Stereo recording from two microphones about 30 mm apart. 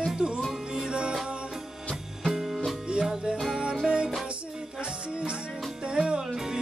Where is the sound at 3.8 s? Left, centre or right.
Right.